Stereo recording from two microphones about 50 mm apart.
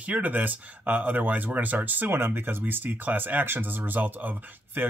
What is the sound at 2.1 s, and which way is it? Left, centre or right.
Speech, right.